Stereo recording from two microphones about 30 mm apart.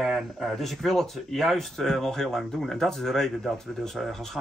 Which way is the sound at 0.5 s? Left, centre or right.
Centre.